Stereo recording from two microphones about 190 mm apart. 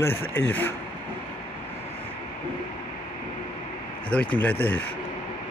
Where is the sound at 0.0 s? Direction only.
10° left (ahead or behind).